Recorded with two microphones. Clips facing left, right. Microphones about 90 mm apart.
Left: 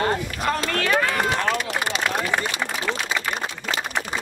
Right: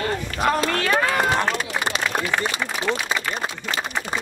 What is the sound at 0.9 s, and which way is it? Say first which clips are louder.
Run: even; 20° right (ahead or behind).